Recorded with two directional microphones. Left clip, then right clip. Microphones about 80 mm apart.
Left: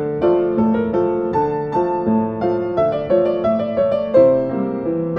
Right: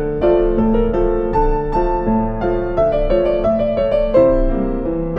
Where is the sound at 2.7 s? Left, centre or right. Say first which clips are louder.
Right 2 dB; centre.